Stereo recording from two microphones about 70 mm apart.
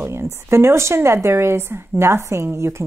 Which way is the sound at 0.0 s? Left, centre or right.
Right.